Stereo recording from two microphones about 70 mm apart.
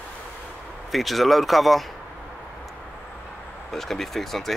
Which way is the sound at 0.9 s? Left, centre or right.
Centre.